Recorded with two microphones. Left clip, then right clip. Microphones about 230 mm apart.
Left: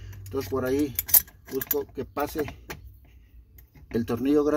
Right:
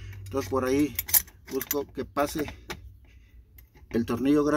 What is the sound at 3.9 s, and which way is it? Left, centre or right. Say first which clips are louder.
Speech: left 1 dB; centre.